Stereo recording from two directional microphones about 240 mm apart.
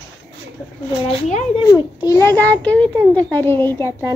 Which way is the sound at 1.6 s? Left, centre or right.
Centre.